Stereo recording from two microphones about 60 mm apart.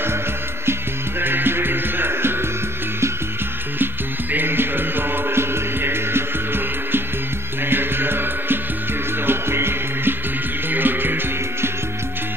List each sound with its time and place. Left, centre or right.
1.2 s music: right
3.8 s music: right